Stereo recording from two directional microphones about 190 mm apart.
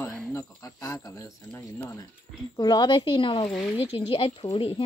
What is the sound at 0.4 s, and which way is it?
Cricket, 15° left (ahead or behind).